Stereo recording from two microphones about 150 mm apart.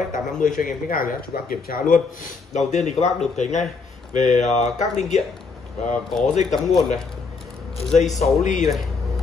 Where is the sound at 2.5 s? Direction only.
50° left (ahead or behind).